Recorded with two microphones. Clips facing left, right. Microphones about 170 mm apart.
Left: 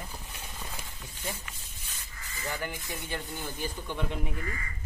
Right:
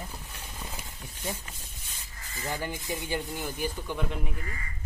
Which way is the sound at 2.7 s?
15° right (ahead or behind).